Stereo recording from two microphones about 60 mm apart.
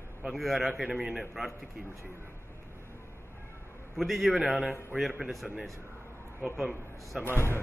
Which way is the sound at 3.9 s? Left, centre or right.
Centre.